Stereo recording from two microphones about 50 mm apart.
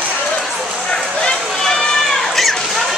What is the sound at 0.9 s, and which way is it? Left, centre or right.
Run, centre.